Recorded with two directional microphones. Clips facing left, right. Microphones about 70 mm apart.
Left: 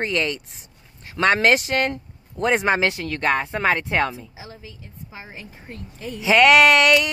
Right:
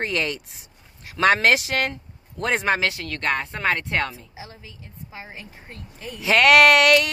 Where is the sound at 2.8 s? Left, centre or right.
Left.